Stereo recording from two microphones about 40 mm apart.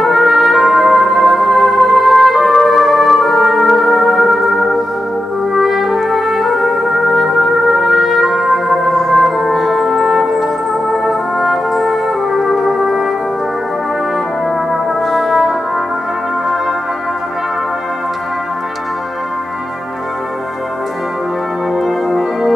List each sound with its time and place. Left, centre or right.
0.0 s trumpet: centre
14.7 s music: centre
21.7 s music: centre